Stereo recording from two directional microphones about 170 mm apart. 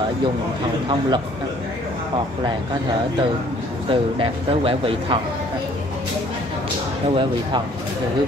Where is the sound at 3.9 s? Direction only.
35° right (ahead or behind).